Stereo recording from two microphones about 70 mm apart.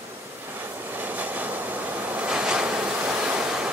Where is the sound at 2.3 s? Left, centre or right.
Centre.